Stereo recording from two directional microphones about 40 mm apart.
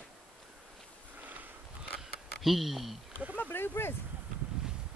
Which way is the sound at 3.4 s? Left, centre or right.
Left.